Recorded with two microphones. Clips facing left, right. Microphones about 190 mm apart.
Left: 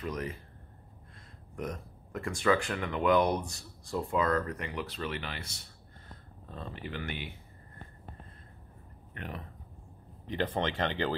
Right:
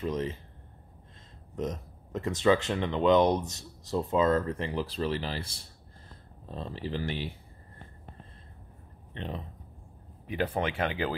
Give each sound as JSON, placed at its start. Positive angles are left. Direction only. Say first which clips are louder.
{"t": 0.0, "sound": "speech", "louder": "right 5 dB", "side_deg": -25}
{"t": 1.5, "sound": "speech", "louder": "right 4 dB", "side_deg": -20}
{"t": 9.1, "sound": "speech", "louder": "right 4 dB", "side_deg": -25}
{"t": 10.2, "sound": "speech", "louder": "right 1 dB", "side_deg": -10}